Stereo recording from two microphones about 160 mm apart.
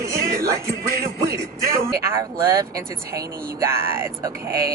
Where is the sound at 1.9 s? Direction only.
15° right (ahead or behind).